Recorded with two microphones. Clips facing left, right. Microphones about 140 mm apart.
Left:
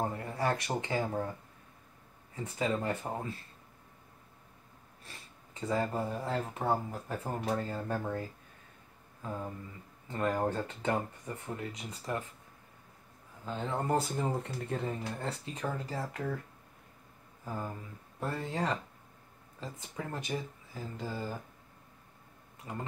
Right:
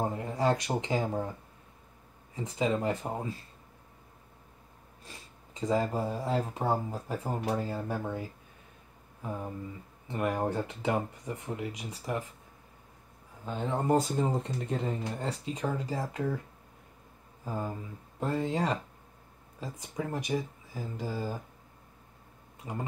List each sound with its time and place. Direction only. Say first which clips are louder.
0.0 s speech: right 4 dB; 20° right (ahead or behind)
2.3 s speech: right 3 dB; 20° right (ahead or behind)
5.0 s speech: right 3 dB; 15° right (ahead or behind)
9.2 s a sound: right 2 dB; 15° right (ahead or behind)
10.0 s speech: right 1 dB; 15° right (ahead or behind)
13.5 s speech: right 4 dB; 15° right (ahead or behind)
17.5 s speech: right 4 dB; 20° right (ahead or behind)
22.6 s speech: right 3 dB; 15° right (ahead or behind)